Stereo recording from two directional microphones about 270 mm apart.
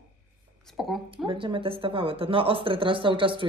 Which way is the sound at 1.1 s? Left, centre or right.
Centre.